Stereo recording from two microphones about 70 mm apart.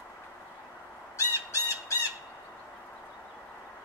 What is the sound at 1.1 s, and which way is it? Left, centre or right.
Crow, left.